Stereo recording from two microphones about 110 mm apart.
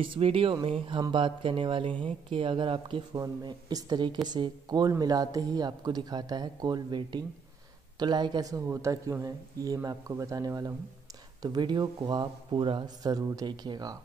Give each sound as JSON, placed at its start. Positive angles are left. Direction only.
{"t": 0.0, "sound": "speech", "side_deg": -55}
{"t": 3.2, "sound": "speech", "side_deg": -35}